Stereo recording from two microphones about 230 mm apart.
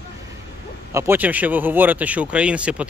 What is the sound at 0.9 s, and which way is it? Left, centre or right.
Speech, centre.